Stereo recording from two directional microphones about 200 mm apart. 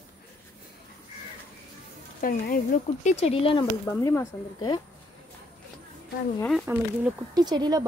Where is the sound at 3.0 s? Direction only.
35° left (ahead or behind).